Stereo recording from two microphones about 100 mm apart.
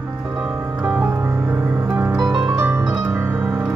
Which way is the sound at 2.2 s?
40° right (ahead or behind).